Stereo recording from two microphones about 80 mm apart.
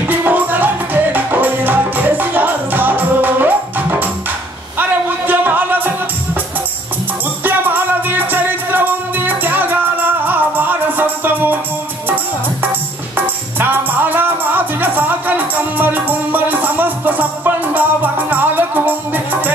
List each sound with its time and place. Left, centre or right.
0.1 s music: right
7.4 s music: right
13.1 s music: right